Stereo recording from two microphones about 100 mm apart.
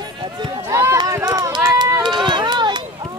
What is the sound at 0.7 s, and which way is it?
Run, 30° right (ahead or behind).